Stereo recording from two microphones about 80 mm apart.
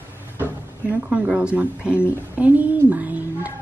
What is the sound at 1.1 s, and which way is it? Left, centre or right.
Speech, centre.